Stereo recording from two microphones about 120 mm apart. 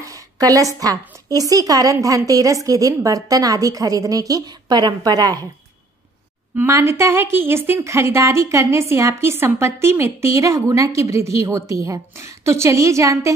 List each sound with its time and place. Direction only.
0.0 s a woman's voice: 30° right (ahead or behind)
6.5 s a woman's voice: 20° right (ahead or behind)